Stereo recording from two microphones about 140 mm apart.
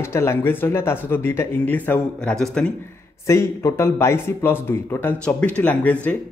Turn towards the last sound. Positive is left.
turn(degrees=10)  # may be behind; listen again after turning